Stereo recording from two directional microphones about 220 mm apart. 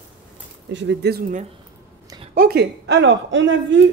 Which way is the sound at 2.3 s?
45° right (ahead or behind).